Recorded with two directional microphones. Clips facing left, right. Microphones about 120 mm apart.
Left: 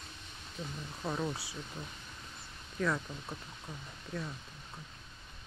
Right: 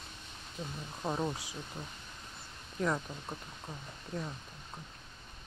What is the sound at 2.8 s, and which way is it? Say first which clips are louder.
Speech: right 1 dB; 15° right (ahead or behind).